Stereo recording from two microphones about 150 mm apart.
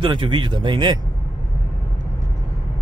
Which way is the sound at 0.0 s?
35° right (ahead or behind).